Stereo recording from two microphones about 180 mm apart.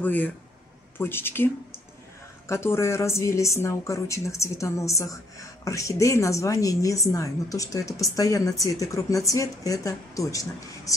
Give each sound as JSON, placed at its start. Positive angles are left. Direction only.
{"t": 0.0, "sound": "a woman's voice", "side_deg": 10}